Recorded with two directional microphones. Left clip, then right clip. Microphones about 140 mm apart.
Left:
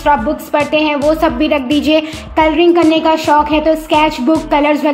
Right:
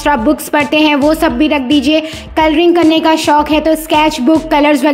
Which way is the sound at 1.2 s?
20° right (ahead or behind).